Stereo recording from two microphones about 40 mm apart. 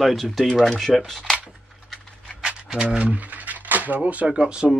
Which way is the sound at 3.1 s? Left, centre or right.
Right.